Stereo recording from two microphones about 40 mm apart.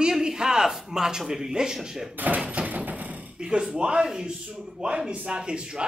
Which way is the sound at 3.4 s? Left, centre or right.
Right.